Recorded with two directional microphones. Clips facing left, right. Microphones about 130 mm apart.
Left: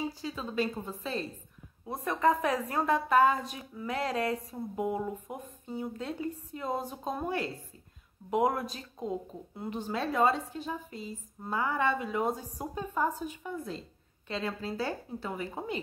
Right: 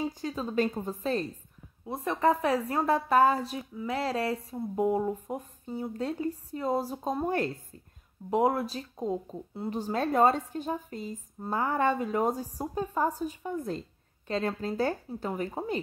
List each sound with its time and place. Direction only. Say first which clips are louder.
0.2 s a woman's voice: right 4 dB; 40° right (ahead or behind)
1.9 s speech: right 1 dB; 30° right (ahead or behind); by 7.5 s 45° right (ahead or behind)
8.3 s a woman's voice: right 2 dB; 30° right (ahead or behind)